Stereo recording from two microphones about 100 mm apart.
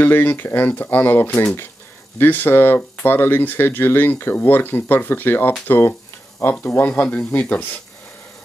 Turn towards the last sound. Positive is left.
turn(degrees=20)  # may be behind; listen again after turning